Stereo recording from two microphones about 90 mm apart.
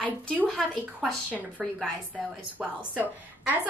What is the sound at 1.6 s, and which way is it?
Speech, centre (ahead or behind).